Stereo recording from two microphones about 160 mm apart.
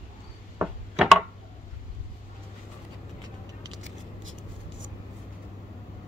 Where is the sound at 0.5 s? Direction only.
5° right (ahead or behind).